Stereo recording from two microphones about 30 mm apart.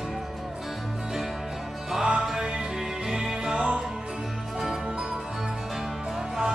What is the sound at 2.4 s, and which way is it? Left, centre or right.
Music, right.